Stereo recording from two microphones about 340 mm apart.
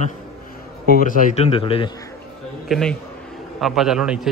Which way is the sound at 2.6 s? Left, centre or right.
Centre.